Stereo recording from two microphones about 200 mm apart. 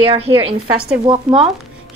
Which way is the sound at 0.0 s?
30° right (ahead or behind).